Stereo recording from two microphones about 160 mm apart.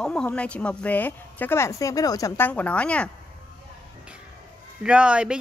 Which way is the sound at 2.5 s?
10° left (ahead or behind).